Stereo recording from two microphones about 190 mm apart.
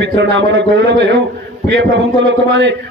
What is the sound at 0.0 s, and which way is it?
A man's voice, 65° right (ahead or behind).